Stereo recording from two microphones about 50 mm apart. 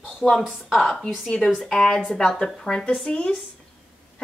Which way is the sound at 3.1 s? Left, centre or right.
Left.